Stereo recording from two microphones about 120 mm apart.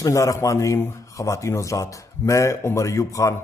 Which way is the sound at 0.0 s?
25° left (ahead or behind).